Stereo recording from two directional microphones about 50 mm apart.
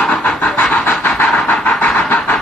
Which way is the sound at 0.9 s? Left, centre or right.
Left.